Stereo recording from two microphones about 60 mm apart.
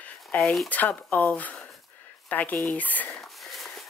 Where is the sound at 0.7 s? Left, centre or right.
Left.